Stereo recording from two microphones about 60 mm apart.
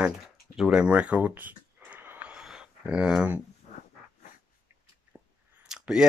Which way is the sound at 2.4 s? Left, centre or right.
Centre.